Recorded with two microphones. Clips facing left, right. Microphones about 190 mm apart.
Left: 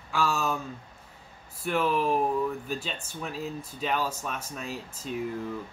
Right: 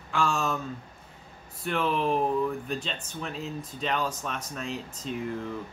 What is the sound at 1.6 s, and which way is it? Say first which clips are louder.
Speech: left 1 dB; 5° left (ahead or behind).